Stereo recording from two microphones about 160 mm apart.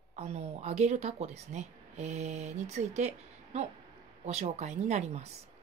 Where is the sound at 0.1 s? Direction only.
45° right (ahead or behind).